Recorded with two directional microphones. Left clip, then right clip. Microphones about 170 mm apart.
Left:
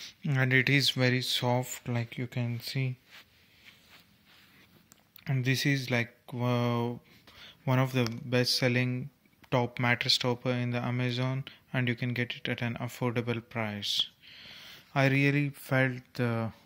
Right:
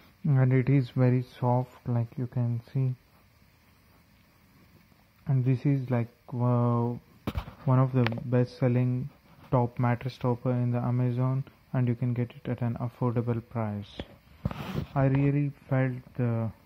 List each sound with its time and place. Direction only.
0.2 s speech: 10° left (ahead or behind)
1.5 s speech: 30° left (ahead or behind)
5.2 s speech: 20° left (ahead or behind)